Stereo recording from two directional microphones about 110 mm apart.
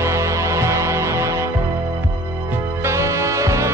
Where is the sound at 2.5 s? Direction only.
25° right (ahead or behind).